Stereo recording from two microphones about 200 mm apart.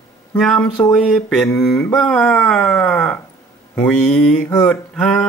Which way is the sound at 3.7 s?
5° left (ahead or behind).